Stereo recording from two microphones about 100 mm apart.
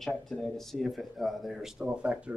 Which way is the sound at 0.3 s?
5° left (ahead or behind).